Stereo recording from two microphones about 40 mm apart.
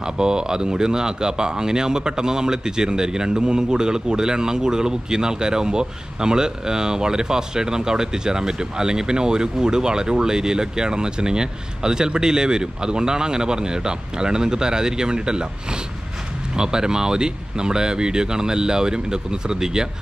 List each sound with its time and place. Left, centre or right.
0.0 s speech: centre